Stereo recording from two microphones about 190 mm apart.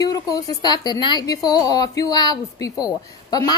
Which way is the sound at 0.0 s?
20° left (ahead or behind).